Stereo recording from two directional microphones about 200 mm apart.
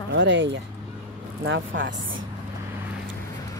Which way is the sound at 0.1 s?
65° right (ahead or behind).